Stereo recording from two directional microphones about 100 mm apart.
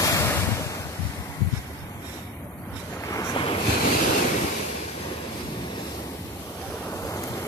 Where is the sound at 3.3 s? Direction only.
60° left (ahead or behind).